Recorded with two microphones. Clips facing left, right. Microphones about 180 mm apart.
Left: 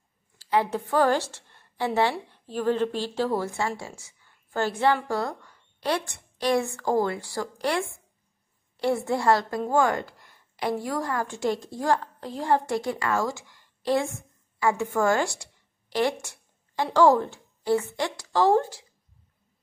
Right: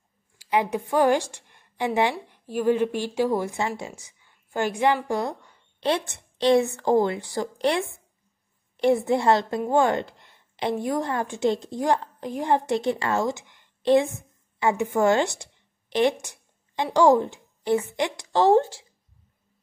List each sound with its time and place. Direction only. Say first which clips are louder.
0.4 s a woman's voice: right 1 dB; 15° right (ahead or behind)